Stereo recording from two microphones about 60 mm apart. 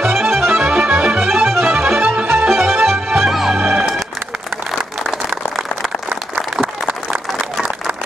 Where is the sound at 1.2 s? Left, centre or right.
Right.